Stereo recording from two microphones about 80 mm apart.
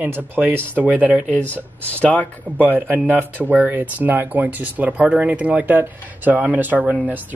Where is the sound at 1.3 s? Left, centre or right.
Centre.